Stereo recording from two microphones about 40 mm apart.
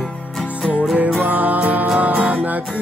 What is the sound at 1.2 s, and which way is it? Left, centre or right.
Music, right.